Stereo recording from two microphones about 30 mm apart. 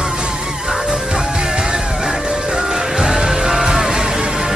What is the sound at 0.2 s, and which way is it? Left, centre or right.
Music, right.